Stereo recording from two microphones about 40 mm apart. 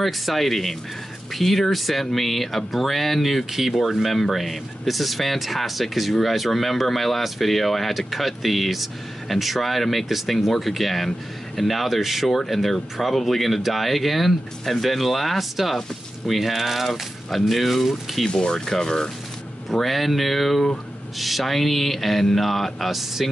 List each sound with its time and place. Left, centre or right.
0.0 s speech: centre
18.3 s speech: centre
19.7 s speech: centre